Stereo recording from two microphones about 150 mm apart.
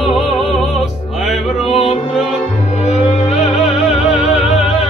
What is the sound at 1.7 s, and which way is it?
Music, 40° left (ahead or behind).